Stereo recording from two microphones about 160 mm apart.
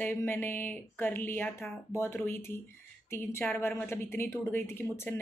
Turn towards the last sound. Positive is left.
turn(degrees=15)  # may be behind; listen again after turning